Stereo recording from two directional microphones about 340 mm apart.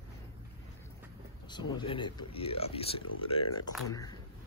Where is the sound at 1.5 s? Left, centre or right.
Centre.